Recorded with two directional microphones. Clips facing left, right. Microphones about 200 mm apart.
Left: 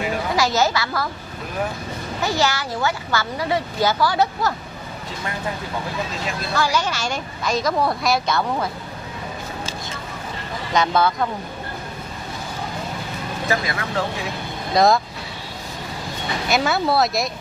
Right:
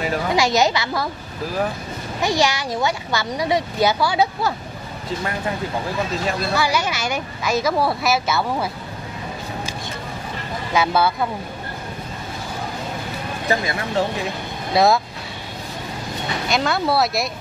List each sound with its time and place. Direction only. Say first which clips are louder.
0.4 s speech: right 1 dB; 15° right (ahead or behind)
2.2 s speech: right 2 dB; 15° right (ahead or behind)
6.5 s speech: left 4 dB; 10° right (ahead or behind)
10.7 s speech: even; 5° right (ahead or behind)
13.5 s speech: right 2 dB; 25° right (ahead or behind)
14.7 s speech: even; 5° right (ahead or behind)
16.4 s speech: left 1 dB; 5° left (ahead or behind)